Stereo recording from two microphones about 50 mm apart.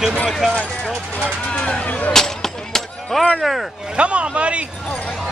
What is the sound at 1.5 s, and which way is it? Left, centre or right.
Speech, left.